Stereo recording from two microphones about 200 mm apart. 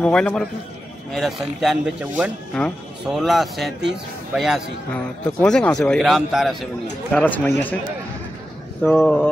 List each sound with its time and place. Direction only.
0.0 s speech: 5° left (ahead or behind)
8.8 s speech: 5° left (ahead or behind)